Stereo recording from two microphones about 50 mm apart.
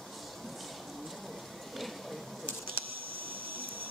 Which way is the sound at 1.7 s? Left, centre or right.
Centre.